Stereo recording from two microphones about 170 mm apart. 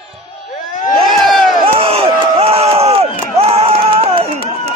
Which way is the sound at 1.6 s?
35° right (ahead or behind).